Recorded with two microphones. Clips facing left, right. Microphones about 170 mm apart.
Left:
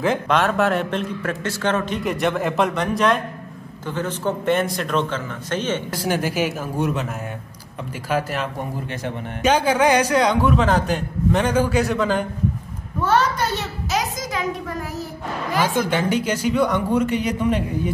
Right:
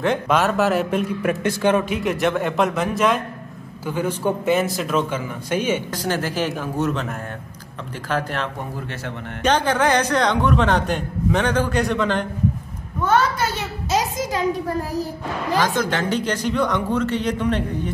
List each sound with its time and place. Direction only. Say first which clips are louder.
0.0 s a man's voice: even; centre (ahead or behind)
5.9 s a woman's voice: left 1 dB; 10° left (ahead or behind)
13.8 s a child's voice: right 4 dB; 30° right (ahead or behind)
15.6 s speech: left 5 dB; 10° left (ahead or behind)